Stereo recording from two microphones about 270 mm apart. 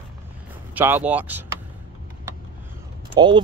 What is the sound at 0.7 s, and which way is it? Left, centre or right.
Speech, centre.